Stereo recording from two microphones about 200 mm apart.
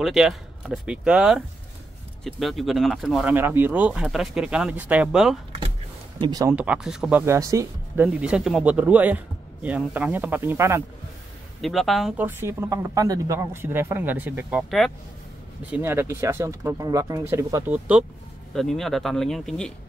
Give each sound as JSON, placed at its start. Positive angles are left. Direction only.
{"t": 0.0, "sound": "speech", "side_deg": 0}
{"t": 6.2, "sound": "speech", "side_deg": -20}
{"t": 6.5, "sound": "speech", "side_deg": -5}
{"t": 11.6, "sound": "speech", "side_deg": 0}